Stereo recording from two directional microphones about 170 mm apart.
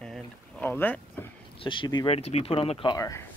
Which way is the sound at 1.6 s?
30° left (ahead or behind).